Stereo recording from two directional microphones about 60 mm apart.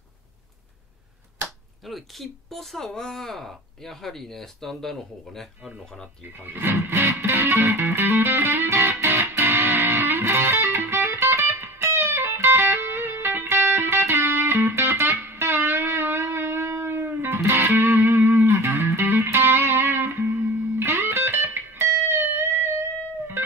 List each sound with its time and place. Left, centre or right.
1.9 s speech: centre
6.3 s music: right